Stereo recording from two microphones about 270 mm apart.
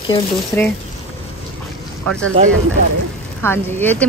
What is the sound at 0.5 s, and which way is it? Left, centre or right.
Speech, centre.